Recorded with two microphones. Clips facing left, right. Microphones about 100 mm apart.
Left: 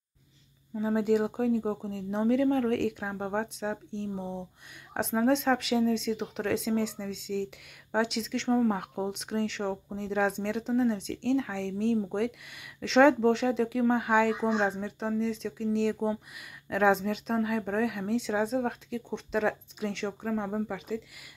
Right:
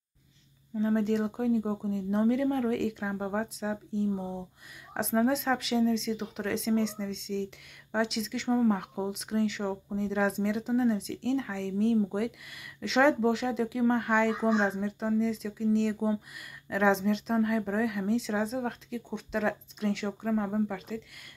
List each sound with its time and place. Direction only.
0.7 s speech: 5° left (ahead or behind)